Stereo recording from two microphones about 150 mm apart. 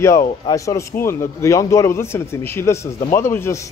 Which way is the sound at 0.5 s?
20° left (ahead or behind).